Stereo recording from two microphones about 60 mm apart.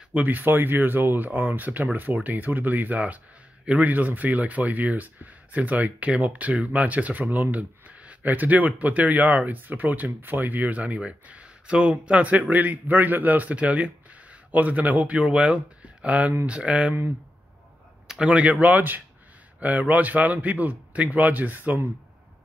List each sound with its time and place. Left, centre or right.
0.1 s speech: right
18.0 s speech: centre; by 21.8 s right